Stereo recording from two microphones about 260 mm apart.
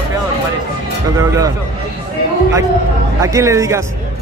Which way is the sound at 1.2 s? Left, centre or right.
Centre.